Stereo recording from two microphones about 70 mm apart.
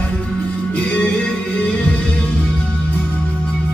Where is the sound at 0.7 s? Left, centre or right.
Centre.